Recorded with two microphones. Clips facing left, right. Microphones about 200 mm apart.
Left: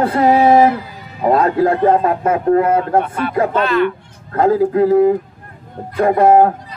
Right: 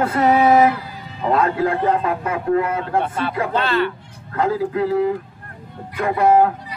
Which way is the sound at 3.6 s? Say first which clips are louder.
Left 4 dB; 30° right (ahead or behind).